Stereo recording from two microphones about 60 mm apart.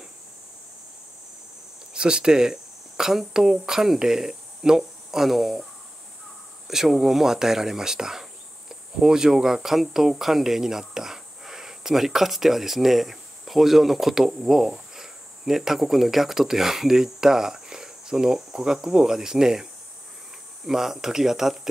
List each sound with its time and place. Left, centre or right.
2.0 s speech: centre
6.7 s speech: centre